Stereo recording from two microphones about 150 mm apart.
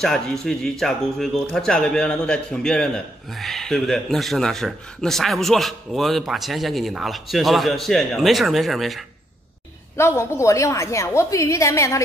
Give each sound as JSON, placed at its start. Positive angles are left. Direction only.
{"t": 0.0, "sound": "speech", "side_deg": 5}
{"t": 9.9, "sound": "a woman's voice", "side_deg": 15}